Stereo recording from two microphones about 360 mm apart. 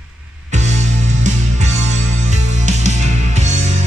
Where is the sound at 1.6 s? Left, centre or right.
Centre.